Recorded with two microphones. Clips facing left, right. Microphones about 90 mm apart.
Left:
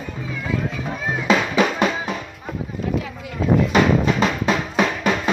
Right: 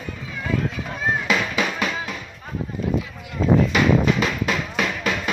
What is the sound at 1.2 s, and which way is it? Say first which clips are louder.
Drum: left 5 dB; 30° left (ahead or behind).